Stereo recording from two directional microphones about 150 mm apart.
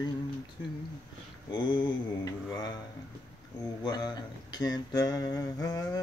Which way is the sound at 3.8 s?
25° left (ahead or behind).